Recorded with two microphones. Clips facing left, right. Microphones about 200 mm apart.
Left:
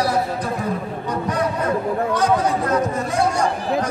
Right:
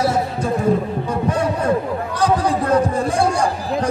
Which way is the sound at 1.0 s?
30° right (ahead or behind).